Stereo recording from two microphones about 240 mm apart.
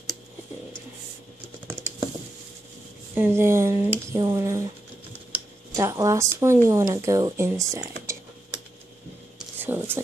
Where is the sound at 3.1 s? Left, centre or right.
Centre.